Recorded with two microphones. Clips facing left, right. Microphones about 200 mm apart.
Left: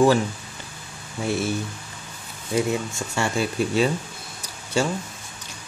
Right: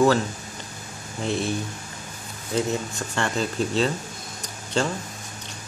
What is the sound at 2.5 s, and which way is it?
Speech, 10° left (ahead or behind).